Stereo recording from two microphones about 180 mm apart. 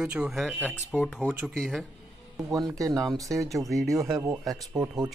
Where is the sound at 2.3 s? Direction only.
20° right (ahead or behind).